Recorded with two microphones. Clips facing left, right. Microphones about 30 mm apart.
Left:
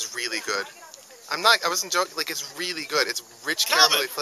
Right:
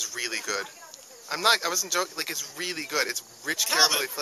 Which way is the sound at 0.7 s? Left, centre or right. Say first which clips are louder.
Left 2 dB; centre.